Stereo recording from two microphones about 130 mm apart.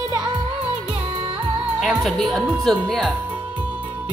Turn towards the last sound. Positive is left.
turn(degrees=5)  # may be behind; listen again after turning